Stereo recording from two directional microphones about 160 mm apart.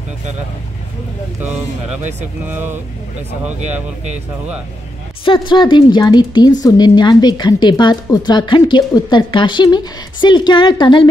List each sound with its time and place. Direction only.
2.5 s speech: 15° right (ahead or behind)
5.2 s a woman's voice: 30° left (ahead or behind)